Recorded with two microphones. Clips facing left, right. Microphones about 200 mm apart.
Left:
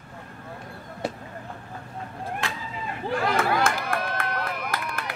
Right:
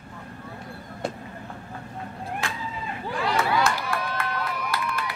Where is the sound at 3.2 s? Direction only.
50° left (ahead or behind).